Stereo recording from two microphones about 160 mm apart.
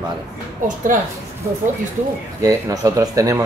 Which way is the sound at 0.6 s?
55° right (ahead or behind).